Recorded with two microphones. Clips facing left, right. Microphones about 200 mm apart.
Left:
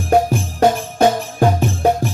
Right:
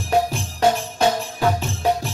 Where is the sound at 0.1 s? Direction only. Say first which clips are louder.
Left 5 dB; 50° left (ahead or behind).